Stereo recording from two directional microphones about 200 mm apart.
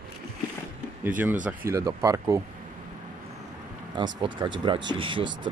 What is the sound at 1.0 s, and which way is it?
Speech, 10° right (ahead or behind).